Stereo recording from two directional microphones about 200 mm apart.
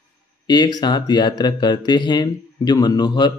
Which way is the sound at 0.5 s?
20° left (ahead or behind).